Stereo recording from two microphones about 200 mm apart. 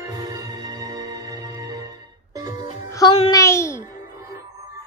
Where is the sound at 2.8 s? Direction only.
15° left (ahead or behind).